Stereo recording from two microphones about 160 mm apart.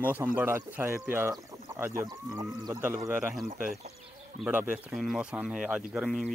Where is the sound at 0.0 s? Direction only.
10° right (ahead or behind).